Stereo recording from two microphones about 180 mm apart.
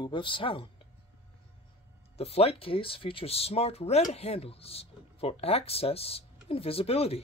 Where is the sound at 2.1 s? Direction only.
35° left (ahead or behind).